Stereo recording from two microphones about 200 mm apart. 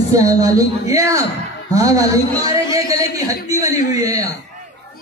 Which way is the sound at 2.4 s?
15° right (ahead or behind).